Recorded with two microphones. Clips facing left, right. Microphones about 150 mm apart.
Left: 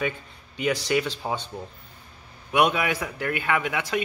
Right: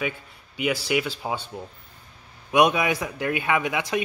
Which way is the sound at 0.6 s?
10° right (ahead or behind).